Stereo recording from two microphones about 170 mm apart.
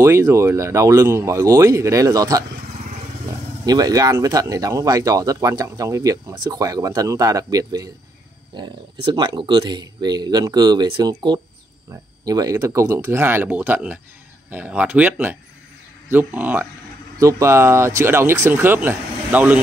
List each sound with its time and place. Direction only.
0.0 s speech: 15° right (ahead or behind)
3.6 s speech: 20° right (ahead or behind)